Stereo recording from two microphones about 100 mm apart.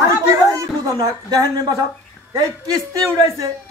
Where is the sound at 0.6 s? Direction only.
40° right (ahead or behind).